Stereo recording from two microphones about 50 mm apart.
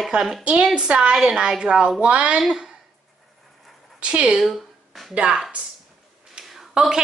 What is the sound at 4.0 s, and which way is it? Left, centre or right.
Speech, right.